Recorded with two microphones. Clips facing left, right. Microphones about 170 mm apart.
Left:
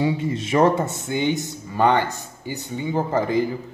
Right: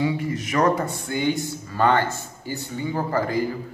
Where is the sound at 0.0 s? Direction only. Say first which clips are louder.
Left 2 dB; 25° left (ahead or behind).